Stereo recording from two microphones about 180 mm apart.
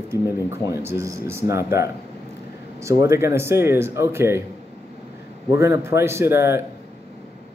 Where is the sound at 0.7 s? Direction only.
15° right (ahead or behind).